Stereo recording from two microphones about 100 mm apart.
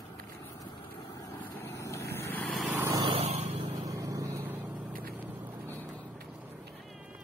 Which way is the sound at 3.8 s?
35° right (ahead or behind).